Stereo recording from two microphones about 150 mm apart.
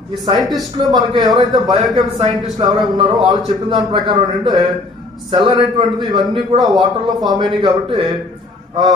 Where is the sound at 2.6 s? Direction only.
40° right (ahead or behind).